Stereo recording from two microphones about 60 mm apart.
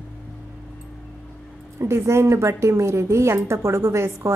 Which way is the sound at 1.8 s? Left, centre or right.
Right.